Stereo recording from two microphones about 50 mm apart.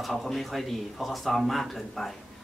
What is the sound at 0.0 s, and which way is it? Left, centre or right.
Speech, centre.